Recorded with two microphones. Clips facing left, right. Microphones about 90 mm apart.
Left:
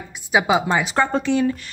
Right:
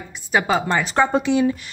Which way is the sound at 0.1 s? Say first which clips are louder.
Left 1 dB; 10° left (ahead or behind).